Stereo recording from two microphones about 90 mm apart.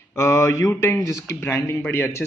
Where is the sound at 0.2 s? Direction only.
35° left (ahead or behind).